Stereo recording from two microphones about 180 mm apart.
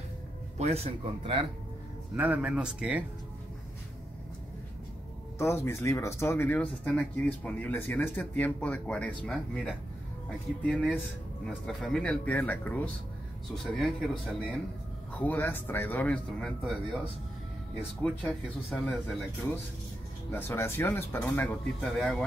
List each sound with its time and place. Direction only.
0.6 s speech: 35° right (ahead or behind)
2.1 s speech: 5° right (ahead or behind)
5.4 s speech: 15° left (ahead or behind)
18.0 s speech: 5° left (ahead or behind)
20.2 s speech: 15° left (ahead or behind)